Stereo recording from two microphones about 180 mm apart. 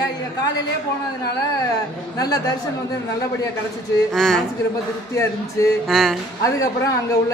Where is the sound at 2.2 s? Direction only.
20° left (ahead or behind).